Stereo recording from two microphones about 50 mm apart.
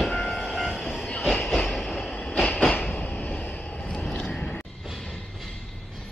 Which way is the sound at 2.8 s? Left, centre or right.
Left.